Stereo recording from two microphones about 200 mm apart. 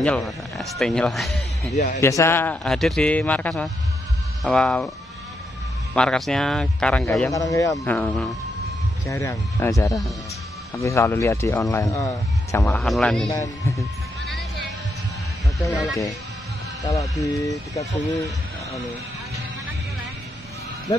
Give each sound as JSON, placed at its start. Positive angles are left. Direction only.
{"t": 0.0, "sound": "speech", "side_deg": 5}
{"t": 2.0, "sound": "speech", "side_deg": 15}
{"t": 5.9, "sound": "speech", "side_deg": 5}
{"t": 7.7, "sound": "speech", "side_deg": 5}
{"t": 12.8, "sound": "speech", "side_deg": 0}
{"t": 13.3, "sound": "speech", "side_deg": 15}
{"t": 15.7, "sound": "speech", "side_deg": 0}
{"t": 16.8, "sound": "speech", "side_deg": 15}